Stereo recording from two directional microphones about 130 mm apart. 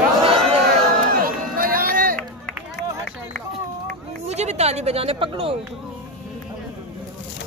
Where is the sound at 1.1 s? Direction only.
90° right.